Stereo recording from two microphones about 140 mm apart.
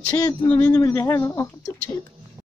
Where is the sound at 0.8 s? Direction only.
25° left (ahead or behind).